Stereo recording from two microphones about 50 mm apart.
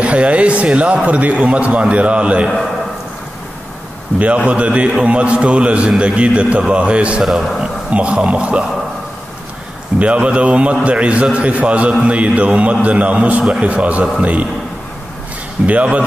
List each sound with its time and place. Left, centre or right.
0.0 s a man's voice: right
4.2 s a man's voice: right
7.2 s a man's voice: centre
7.9 s a man's voice: right
9.9 s a man's voice: right
15.6 s a man's voice: right